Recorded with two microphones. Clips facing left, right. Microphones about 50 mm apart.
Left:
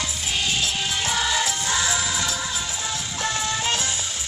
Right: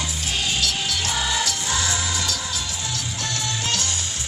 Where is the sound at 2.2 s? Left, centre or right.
Centre.